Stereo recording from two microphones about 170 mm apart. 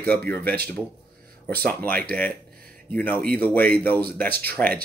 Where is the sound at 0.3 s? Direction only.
10° left (ahead or behind).